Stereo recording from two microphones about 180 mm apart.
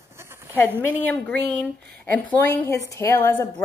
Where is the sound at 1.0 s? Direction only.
10° left (ahead or behind).